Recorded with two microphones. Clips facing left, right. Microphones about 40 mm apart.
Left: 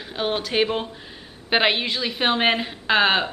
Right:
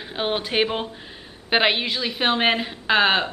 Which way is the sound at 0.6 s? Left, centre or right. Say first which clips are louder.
Left 1 dB; centre.